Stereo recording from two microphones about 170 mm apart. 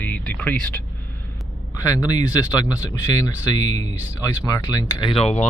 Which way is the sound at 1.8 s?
20° left (ahead or behind).